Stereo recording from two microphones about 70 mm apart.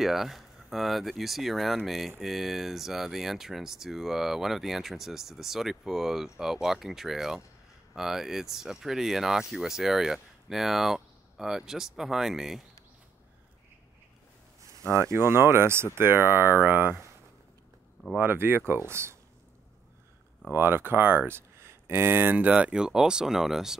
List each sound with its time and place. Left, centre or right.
0.0 s speech: centre
14.8 s speech: right
18.2 s speech: right
20.5 s speech: right; by 23.8 s centre